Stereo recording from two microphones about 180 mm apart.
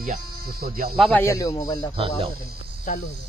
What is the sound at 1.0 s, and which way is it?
Speech, 10° left (ahead or behind).